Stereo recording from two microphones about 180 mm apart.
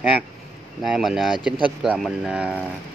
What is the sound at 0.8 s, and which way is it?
Speech, centre (ahead or behind).